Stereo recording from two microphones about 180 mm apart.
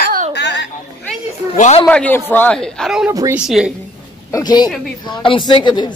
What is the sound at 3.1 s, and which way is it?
Speech, 20° right (ahead or behind).